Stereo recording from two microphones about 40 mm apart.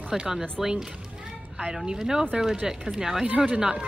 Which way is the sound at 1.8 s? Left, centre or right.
Centre.